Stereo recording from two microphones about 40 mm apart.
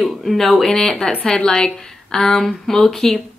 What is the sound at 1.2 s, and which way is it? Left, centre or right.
A woman's voice, left.